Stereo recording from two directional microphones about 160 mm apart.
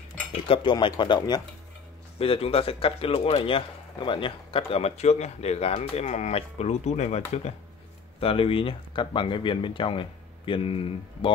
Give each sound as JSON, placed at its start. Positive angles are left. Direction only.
{"t": 0.5, "sound": "speech", "side_deg": 30}